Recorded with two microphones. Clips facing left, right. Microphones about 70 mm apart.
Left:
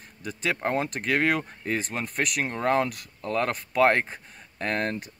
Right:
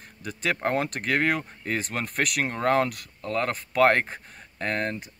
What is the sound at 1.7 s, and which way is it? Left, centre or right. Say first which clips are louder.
Speech: right 1 dB; right.